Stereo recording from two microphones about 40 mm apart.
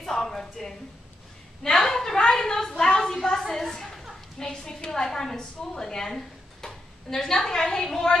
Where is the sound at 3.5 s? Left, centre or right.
Centre.